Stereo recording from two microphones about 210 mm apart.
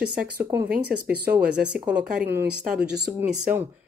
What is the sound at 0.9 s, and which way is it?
Speech, 40° right (ahead or behind).